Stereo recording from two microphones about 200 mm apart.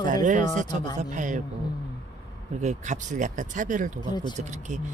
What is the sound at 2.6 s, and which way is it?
Speech, 35° right (ahead or behind).